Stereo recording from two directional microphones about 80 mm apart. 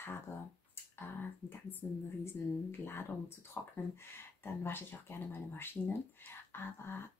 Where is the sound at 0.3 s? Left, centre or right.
Left.